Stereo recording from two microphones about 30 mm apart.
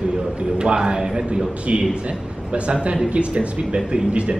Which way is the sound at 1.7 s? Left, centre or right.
Right.